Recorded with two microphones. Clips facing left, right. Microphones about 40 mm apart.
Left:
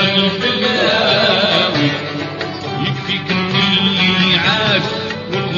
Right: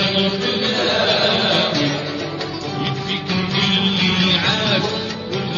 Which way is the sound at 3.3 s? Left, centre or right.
Left.